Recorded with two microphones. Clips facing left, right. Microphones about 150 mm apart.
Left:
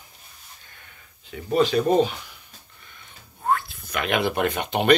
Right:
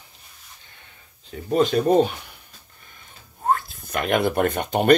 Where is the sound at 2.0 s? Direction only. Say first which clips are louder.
Right 2 dB; 55° right (ahead or behind).